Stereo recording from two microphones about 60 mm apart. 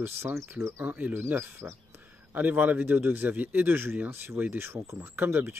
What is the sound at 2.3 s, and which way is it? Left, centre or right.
Speech, right.